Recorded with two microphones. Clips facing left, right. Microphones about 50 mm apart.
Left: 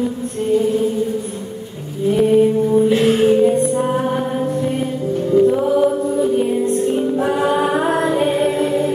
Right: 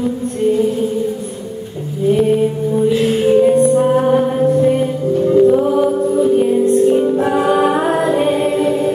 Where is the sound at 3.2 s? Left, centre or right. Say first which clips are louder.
Right 3 dB; centre.